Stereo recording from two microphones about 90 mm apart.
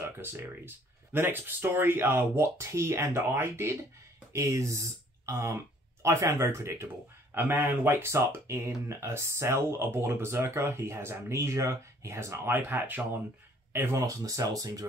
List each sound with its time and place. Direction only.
0.0 s speech: 25° right (ahead or behind)